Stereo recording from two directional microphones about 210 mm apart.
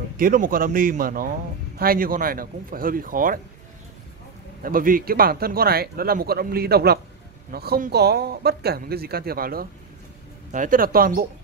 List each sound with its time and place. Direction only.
0.2 s speech: 40° right (ahead or behind)
4.6 s speech: 40° right (ahead or behind)